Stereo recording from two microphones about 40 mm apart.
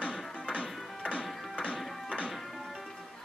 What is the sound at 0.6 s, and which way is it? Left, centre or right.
Music, left.